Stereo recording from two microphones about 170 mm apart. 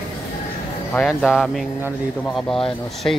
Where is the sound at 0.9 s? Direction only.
Centre (ahead or behind).